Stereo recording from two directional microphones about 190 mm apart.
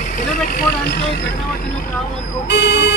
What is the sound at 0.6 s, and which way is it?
Vehicle, 55° left (ahead or behind).